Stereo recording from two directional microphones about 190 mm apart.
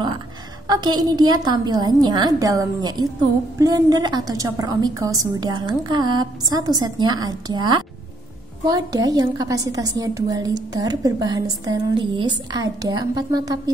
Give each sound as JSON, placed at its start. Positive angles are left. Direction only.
{"t": 0.7, "sound": "a woman's voice", "side_deg": -20}